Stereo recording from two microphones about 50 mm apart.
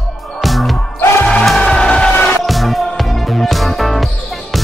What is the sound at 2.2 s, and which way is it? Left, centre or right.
Music, centre.